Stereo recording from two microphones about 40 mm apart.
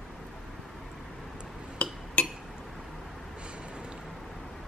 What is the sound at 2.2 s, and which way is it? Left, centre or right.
Chink, left.